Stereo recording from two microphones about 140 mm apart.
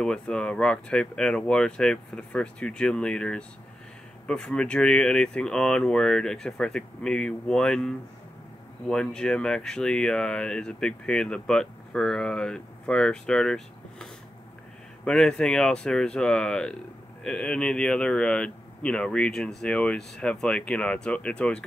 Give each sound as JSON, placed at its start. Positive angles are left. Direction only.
{"t": 0.0, "sound": "speech", "side_deg": 5}
{"t": 15.0, "sound": "speech", "side_deg": 5}